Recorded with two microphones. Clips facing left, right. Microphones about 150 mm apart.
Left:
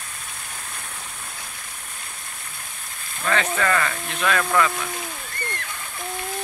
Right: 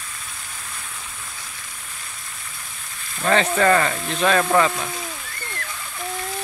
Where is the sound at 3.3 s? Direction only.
35° right (ahead or behind).